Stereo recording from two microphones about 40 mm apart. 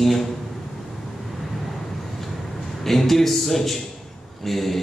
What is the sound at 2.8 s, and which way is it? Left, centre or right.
Speech, centre.